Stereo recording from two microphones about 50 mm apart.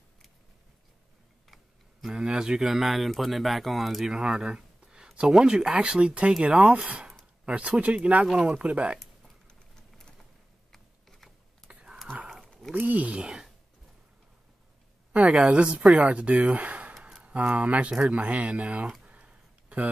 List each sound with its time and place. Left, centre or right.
1.5 s tick: centre
2.1 s speech: centre
2.7 s speech: centre
4.1 s speech: centre
8.3 s speech: centre
8.6 s speech: right
9.5 s a sound: centre
10.7 s a sound: centre
11.7 s a sound: centre
12.7 s speech: right
15.1 s a woman's voice: right
19.0 s a sound: right